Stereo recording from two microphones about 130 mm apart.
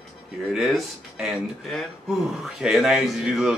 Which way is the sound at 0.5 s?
Centre (ahead or behind).